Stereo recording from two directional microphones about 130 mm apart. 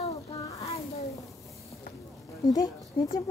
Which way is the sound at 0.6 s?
50° left (ahead or behind).